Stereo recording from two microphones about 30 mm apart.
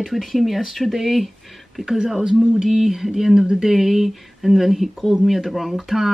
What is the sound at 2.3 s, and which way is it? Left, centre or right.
Speech, centre.